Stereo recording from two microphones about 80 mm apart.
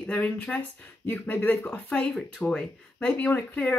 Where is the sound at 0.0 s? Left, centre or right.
Centre.